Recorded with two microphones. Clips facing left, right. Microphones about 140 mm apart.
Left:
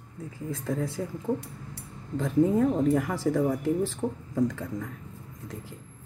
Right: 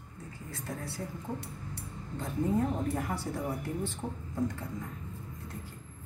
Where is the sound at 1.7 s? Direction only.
90° left.